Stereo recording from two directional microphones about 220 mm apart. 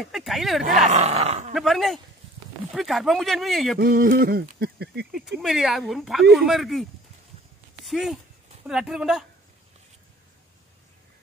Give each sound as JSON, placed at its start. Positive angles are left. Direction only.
{"t": 0.0, "sound": "speech", "side_deg": 0}
{"t": 0.7, "sound": "speech", "side_deg": -30}
{"t": 1.5, "sound": "speech", "side_deg": 0}
{"t": 3.8, "sound": "a sound", "side_deg": -40}
{"t": 5.4, "sound": "speech", "side_deg": 0}